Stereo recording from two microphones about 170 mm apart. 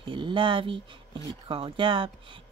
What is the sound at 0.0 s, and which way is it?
Speech, 30° right (ahead or behind).